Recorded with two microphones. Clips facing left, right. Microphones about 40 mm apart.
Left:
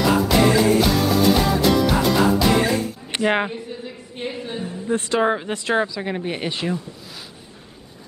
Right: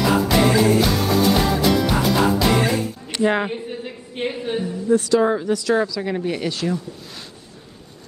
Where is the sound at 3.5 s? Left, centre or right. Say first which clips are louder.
Right 3 dB; right.